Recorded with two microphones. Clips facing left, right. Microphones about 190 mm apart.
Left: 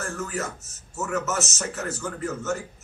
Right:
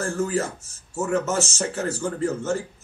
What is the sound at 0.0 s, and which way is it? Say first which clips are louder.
A man's voice: right 6 dB; 30° right (ahead or behind).